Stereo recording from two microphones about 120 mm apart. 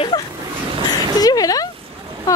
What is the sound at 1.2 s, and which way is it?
Speech, 30° left (ahead or behind).